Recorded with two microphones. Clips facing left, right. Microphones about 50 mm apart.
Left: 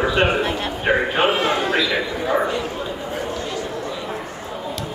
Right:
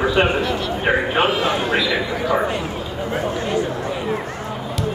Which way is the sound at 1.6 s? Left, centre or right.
Centre.